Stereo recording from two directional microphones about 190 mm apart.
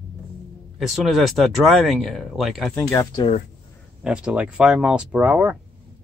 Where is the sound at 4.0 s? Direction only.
5° right (ahead or behind).